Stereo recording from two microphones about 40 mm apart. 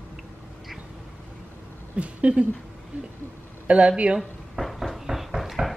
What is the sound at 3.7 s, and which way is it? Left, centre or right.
Speech, right.